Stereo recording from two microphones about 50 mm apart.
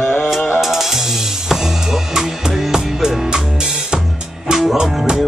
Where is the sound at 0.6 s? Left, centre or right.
Centre.